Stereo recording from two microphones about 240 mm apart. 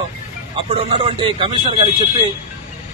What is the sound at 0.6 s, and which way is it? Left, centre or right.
Speech, right.